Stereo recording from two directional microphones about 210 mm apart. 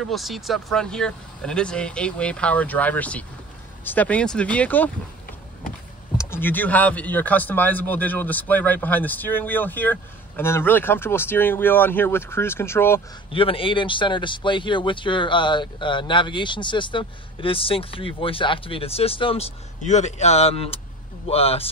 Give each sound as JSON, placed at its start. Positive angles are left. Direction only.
{"t": 0.0, "sound": "speech", "side_deg": 0}
{"t": 6.1, "sound": "speech", "side_deg": 10}
{"t": 13.3, "sound": "speech", "side_deg": 25}